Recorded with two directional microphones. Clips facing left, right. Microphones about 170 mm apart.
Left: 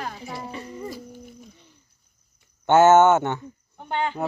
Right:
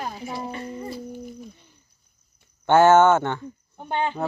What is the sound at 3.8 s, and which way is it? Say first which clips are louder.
Speech: right 1 dB; 15° right (ahead or behind).